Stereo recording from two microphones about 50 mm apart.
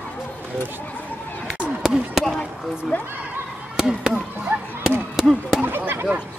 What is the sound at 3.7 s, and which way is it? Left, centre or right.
Chop, centre.